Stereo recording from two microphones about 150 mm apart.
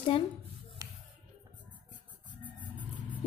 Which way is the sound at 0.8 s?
20° right (ahead or behind).